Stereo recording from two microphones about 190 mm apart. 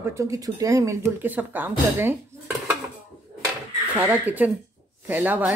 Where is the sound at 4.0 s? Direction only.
10° right (ahead or behind).